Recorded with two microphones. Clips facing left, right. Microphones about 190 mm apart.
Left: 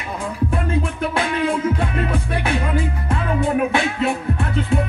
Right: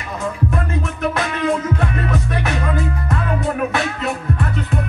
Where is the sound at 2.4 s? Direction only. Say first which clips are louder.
Even; 30° left (ahead or behind).